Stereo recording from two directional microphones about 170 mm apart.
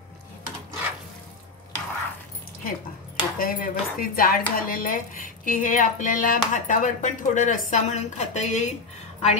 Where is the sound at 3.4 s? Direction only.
55° left (ahead or behind).